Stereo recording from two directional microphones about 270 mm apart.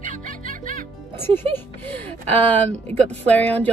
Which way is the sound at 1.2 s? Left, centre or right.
Centre.